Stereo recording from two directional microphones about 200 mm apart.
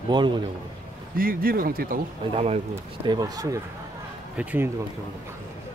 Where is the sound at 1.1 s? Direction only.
45° right (ahead or behind).